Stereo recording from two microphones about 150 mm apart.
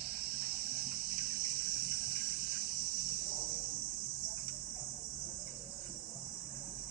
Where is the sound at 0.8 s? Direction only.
70° right (ahead or behind).